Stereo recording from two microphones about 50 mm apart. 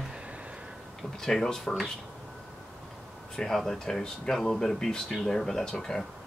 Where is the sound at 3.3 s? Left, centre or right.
Centre.